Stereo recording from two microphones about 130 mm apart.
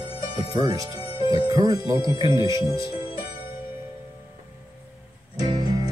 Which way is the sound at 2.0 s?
40° left (ahead or behind).